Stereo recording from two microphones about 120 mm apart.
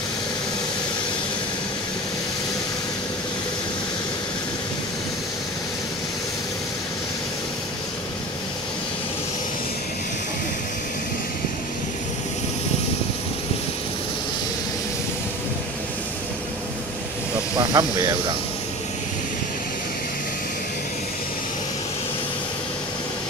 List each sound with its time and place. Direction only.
17.6 s speech: 35° right (ahead or behind)